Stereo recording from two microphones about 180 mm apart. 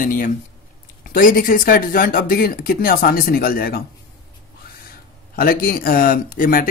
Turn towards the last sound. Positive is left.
turn(degrees=50)  # may be behind; listen again after turning